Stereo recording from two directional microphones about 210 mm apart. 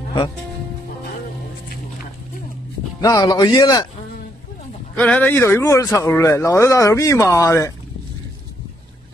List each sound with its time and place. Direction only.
3.0 s speech: 15° left (ahead or behind)
4.9 s speech: 5° left (ahead or behind)